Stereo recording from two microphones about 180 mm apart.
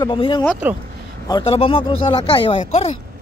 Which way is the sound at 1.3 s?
25° left (ahead or behind).